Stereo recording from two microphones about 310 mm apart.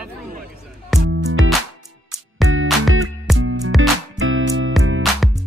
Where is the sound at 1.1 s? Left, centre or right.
Right.